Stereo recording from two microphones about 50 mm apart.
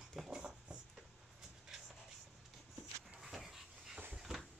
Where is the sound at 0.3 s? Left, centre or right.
Centre.